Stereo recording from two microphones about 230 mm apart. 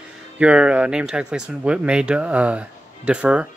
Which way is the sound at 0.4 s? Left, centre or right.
Centre.